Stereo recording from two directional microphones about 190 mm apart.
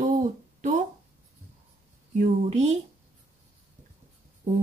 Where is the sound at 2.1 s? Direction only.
40° right (ahead or behind).